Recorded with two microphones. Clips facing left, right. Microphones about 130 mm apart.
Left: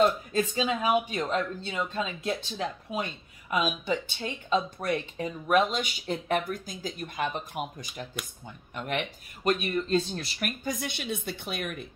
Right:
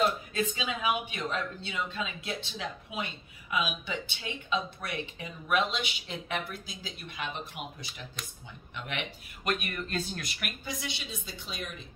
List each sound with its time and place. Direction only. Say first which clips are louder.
0.3 s speech: left 5 dB; 40° left (ahead or behind)
8.7 s speech: left 6 dB; 45° left (ahead or behind)
10.6 s a woman's voice: left 5 dB; 50° left (ahead or behind)